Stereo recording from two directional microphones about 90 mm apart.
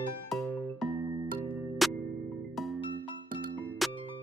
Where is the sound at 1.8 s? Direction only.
Centre (ahead or behind).